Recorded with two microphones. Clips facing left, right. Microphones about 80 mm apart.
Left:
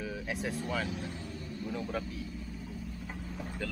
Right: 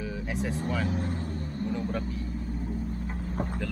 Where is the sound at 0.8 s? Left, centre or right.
Right.